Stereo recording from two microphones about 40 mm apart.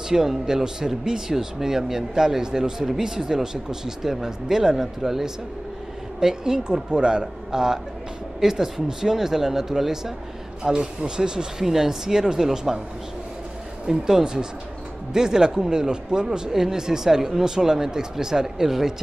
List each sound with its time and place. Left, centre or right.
0.1 s speech: centre
10.6 s speech: centre
13.8 s speech: centre